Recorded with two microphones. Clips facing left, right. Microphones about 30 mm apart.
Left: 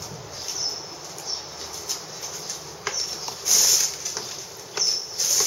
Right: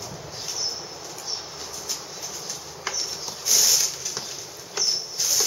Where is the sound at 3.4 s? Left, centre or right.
Centre.